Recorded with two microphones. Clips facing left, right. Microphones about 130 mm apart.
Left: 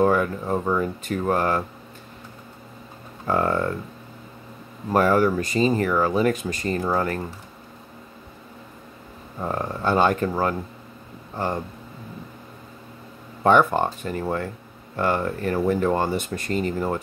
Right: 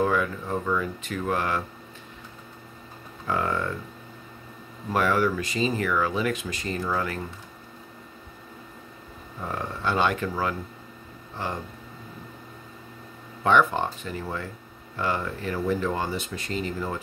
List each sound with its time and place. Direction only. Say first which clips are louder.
0.0 s speech: left 5 dB; 40° left (ahead or behind)
3.3 s speech: left 5 dB; 40° left (ahead or behind)
4.9 s speech: left 5 dB; 40° left (ahead or behind)
9.4 s speech: left 5 dB; 40° left (ahead or behind)
13.4 s speech: left 4 dB; 45° left (ahead or behind)